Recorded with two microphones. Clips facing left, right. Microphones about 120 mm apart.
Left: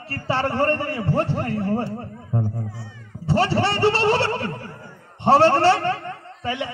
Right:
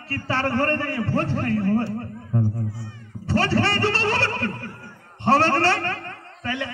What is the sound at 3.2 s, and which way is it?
A man's voice, 20° left (ahead or behind).